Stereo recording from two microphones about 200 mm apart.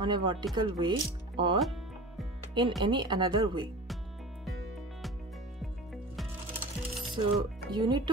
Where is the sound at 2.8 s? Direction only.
20° right (ahead or behind).